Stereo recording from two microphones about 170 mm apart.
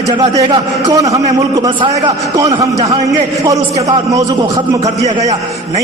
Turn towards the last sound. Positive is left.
turn(degrees=-20)  # may be behind; listen again after turning